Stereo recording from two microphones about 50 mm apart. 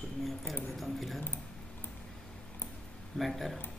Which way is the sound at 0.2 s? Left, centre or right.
Centre.